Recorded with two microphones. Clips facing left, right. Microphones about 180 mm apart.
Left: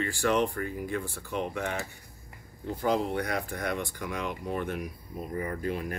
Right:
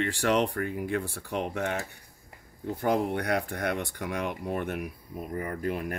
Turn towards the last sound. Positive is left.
turn(degrees=-55)  # may be behind; listen again after turning